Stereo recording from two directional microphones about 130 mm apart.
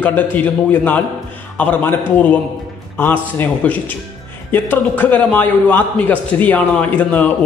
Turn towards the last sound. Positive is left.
turn(degrees=10)  # may be behind; listen again after turning